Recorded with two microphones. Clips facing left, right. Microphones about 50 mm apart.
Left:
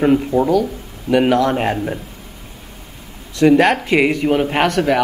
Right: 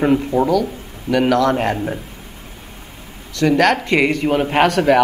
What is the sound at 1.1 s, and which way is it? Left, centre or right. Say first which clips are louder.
Speech: left 1 dB; centre.